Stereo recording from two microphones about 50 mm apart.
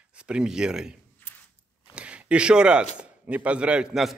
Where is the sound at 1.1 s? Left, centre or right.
Left.